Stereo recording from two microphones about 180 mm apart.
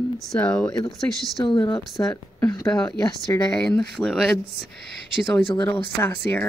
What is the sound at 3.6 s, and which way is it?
Speech, 5° left (ahead or behind).